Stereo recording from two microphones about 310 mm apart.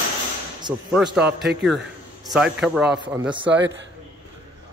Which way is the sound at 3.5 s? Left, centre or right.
Right.